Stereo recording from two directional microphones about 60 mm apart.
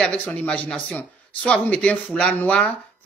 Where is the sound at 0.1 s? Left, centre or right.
Left.